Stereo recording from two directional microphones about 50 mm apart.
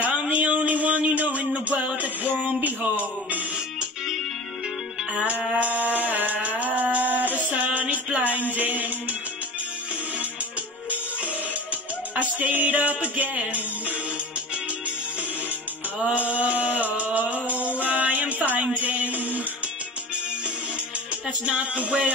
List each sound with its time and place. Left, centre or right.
0.2 s a sound: right
2.0 s music: right
5.1 s music: right
5.6 s a sound: right
11.7 s music: right
16.2 s music: right
21.5 s music: right